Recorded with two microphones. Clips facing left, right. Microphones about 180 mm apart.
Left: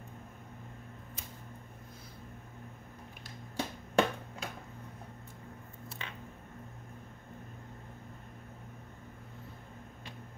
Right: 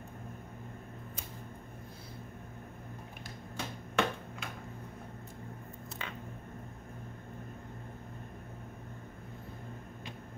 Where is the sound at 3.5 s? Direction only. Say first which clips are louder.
Left 4 dB; 35° left (ahead or behind).